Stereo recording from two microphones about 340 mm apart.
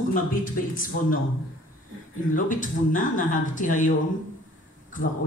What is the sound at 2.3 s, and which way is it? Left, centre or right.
A man's voice, left.